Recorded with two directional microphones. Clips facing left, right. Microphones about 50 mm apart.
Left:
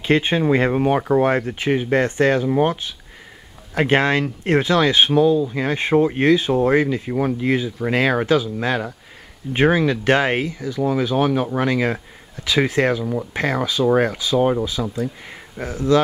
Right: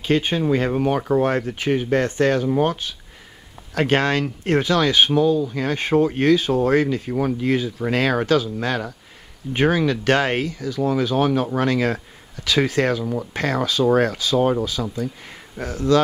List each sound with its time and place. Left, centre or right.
0.0 s speech: left
2.5 s speech: centre
5.1 s speech: centre
13.0 s speech: centre
13.3 s speech: centre
14.4 s speech: centre
14.7 s speech: centre